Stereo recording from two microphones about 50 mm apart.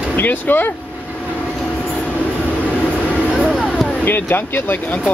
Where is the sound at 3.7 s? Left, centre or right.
Centre.